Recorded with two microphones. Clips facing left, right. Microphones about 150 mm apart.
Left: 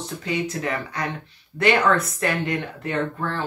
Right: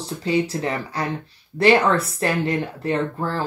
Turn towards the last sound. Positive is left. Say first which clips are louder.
# right 2 dB
turn(degrees=-35)  # may be behind; listen again after turning